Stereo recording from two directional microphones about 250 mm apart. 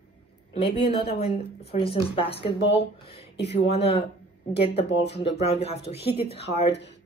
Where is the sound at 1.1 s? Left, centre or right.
Left.